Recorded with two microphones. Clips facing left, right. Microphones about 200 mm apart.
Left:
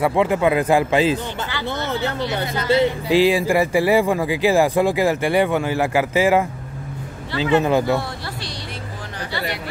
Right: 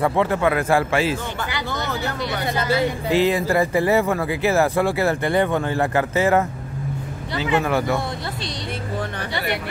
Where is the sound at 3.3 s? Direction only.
10° left (ahead or behind).